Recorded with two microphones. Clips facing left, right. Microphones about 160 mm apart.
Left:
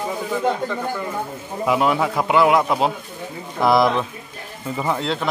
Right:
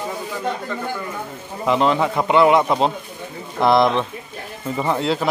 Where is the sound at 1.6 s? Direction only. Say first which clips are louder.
Right 1 dB; 10° left (ahead or behind).